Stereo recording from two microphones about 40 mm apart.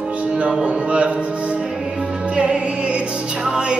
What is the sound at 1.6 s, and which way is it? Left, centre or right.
Music, right.